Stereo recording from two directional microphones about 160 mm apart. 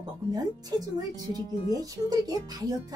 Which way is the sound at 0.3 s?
25° right (ahead or behind).